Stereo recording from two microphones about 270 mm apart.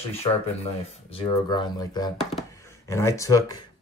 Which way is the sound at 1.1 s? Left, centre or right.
Centre.